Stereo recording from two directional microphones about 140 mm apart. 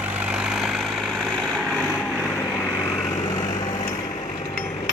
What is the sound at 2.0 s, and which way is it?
Vehicle, 10° left (ahead or behind).